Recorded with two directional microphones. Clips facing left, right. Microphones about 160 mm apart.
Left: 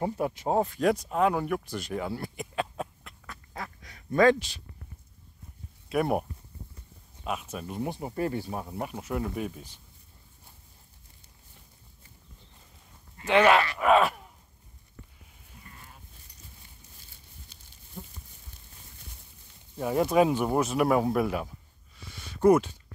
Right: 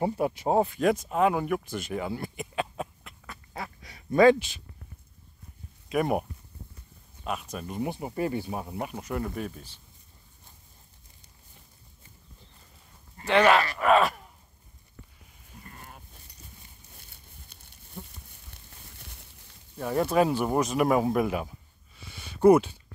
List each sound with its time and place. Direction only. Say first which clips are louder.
0.0 s speech: right 2 dB; 10° right (ahead or behind)
1.0 s a sound: right 1 dB; 5° right (ahead or behind)
5.9 s speech: even; centre (ahead or behind)
7.5 s speech: right 1 dB; centre (ahead or behind)
13.3 s speech: even; 5° left (ahead or behind)
15.6 s sheep: right 4 dB; 50° right (ahead or behind)
16.9 s crumpling: right 1 dB; 60° right (ahead or behind)
19.8 s speech: left 1 dB; 10° left (ahead or behind); by 21.5 s 5° right (ahead or behind)